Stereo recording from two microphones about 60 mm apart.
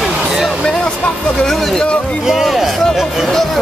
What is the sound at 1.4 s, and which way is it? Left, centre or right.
Speech, centre.